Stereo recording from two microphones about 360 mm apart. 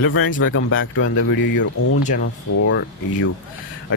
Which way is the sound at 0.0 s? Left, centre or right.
Left.